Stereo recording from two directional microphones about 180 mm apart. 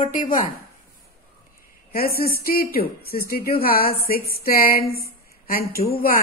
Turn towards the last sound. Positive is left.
turn(degrees=55)  # may be behind; listen again after turning